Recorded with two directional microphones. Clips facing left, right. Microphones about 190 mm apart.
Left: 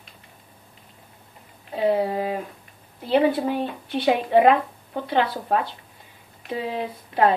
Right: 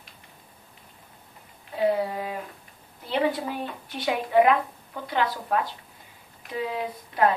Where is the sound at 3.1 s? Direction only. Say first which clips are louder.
Left 6 dB; 25° left (ahead or behind).